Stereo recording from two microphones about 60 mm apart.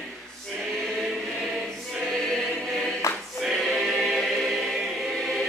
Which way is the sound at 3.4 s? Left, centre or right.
Centre.